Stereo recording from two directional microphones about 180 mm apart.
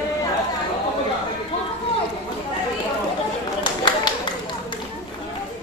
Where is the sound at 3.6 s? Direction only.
25° left (ahead or behind).